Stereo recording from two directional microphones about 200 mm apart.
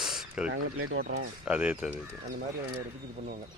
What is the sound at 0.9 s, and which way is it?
Speech, 50° right (ahead or behind).